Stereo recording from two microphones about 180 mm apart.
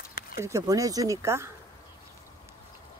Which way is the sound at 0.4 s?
20° right (ahead or behind).